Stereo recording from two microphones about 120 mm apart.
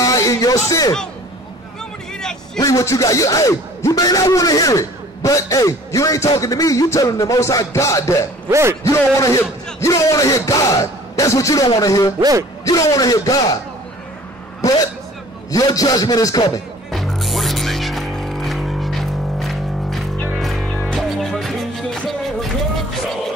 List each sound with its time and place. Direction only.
0.0 s a man's voice: 30° left (ahead or behind)
2.1 s vehicle: 5° left (ahead or behind)
2.6 s a man's voice: 25° left (ahead or behind)
8.5 s speech: 25° right (ahead or behind)
8.8 s a man's voice: 25° left (ahead or behind)
12.2 s speech: 30° right (ahead or behind)
12.6 s a man's voice: 30° left (ahead or behind)
15.5 s a man's voice: 30° left (ahead or behind)
16.9 s music: centre (ahead or behind)